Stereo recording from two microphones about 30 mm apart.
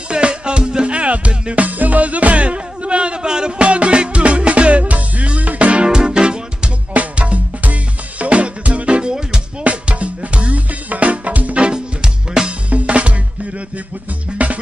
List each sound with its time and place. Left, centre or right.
0.1 s music: right
0.9 s music: right
1.5 s music: right
3.6 s music: right
5.9 s music: right
7.2 s music: right
11.7 s music: right
12.6 s music: right
14.4 s music: right